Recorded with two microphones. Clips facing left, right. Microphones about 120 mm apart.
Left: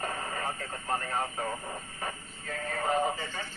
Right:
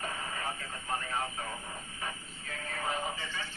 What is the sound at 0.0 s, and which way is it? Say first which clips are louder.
Radio: left 4 dB; 45° left (ahead or behind).